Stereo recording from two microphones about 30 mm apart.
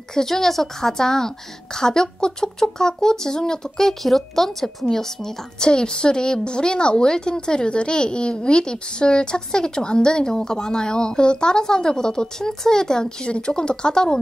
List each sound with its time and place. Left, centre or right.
0.1 s a woman's voice: centre
3.8 s a woman's voice: centre
4.8 s a woman's voice: centre